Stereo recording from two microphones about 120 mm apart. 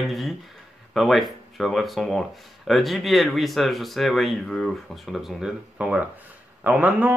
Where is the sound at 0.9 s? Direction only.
Centre (ahead or behind).